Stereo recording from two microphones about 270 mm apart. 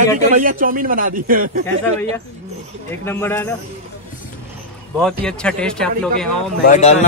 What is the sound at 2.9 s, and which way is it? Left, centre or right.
Speech, centre.